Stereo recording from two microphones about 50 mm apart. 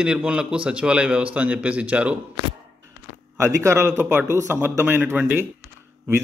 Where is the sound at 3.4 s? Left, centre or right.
Right.